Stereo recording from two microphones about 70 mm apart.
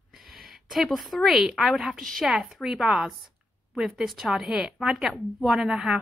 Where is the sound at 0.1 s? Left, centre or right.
Centre.